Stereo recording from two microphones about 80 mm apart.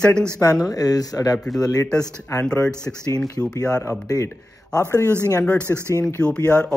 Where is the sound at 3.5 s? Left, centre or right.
Left.